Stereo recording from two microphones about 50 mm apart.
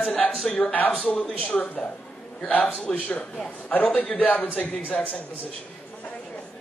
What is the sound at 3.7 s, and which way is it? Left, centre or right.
Speech, left.